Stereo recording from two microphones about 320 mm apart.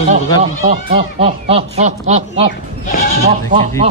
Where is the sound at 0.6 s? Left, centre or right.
Centre.